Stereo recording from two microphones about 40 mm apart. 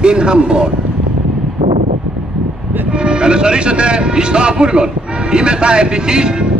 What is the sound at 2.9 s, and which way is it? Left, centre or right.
Speech, right.